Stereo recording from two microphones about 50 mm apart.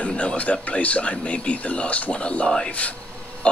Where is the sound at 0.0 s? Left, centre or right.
Left.